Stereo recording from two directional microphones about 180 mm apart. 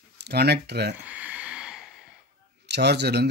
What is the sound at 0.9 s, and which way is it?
Sigh, 10° right (ahead or behind).